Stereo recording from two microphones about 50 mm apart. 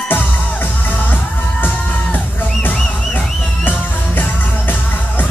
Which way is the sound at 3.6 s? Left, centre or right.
Left.